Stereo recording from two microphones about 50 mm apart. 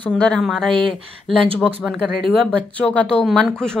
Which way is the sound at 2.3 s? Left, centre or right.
Left.